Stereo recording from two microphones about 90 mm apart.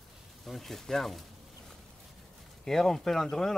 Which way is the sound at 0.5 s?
Centre (ahead or behind).